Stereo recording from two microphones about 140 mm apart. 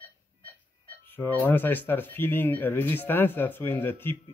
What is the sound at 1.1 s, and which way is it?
Speech, 15° left (ahead or behind).